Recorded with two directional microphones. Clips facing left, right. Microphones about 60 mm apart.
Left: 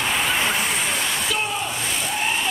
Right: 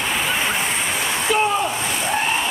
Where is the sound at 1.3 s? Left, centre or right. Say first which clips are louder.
Right 9 dB; right.